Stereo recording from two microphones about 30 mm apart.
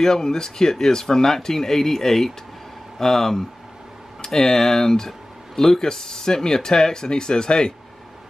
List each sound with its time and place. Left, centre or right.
0.0 s speech: centre